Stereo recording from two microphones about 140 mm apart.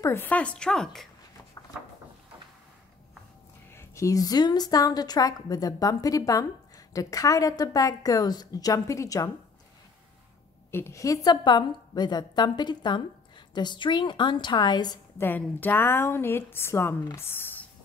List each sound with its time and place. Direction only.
0.0 s a woman's voice: 15° left (ahead or behind)
3.7 s a woman's voice: 20° left (ahead or behind)
10.7 s a woman's voice: 20° left (ahead or behind)
15.1 s a woman's voice: 15° left (ahead or behind)